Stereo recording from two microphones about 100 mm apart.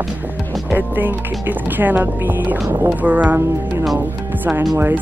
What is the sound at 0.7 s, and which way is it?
Speech, 20° right (ahead or behind).